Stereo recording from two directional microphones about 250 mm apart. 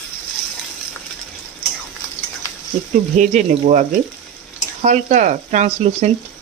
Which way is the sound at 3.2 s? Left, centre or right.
Right.